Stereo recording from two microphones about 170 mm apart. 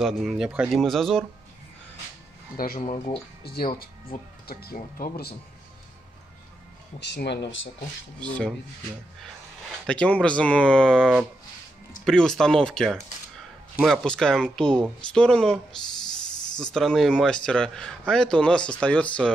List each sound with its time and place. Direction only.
0.0 s a man's voice: centre (ahead or behind)
2.5 s speech: 60° left (ahead or behind)
2.8 s speech: 45° left (ahead or behind)
3.4 s speech: 65° left (ahead or behind)
7.0 s speech: 85° left
8.2 s a man's voice: 5° left (ahead or behind)